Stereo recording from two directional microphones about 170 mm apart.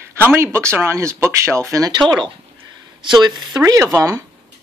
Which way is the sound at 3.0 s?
25° right (ahead or behind).